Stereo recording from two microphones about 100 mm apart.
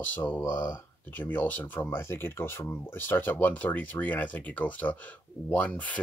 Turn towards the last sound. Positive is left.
turn(degrees=15)  # may be behind; listen again after turning